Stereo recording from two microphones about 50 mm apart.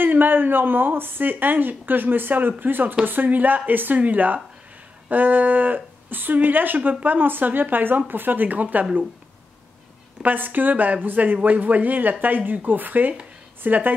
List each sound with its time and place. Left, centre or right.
0.0 s a woman's voice: right
10.2 s a woman's voice: right